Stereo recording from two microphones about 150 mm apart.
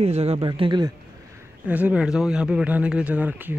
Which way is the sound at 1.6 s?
10° right (ahead or behind).